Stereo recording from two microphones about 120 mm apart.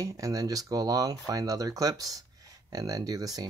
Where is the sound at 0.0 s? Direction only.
25° right (ahead or behind).